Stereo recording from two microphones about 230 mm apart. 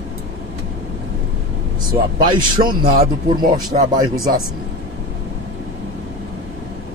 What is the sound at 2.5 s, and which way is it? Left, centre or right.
Speech, right.